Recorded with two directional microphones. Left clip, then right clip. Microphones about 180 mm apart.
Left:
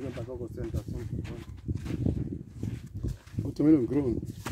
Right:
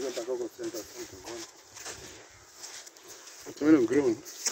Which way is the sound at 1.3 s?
50° right (ahead or behind).